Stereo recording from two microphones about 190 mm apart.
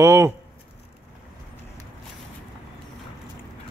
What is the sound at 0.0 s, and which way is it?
Speech, 15° right (ahead or behind).